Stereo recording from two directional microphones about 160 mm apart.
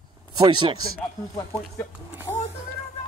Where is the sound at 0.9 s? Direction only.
15° left (ahead or behind).